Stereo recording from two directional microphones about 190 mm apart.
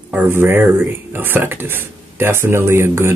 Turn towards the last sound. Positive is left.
turn(degrees=-15)  # may be behind; listen again after turning